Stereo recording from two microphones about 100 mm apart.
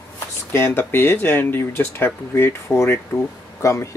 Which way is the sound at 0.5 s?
25° left (ahead or behind).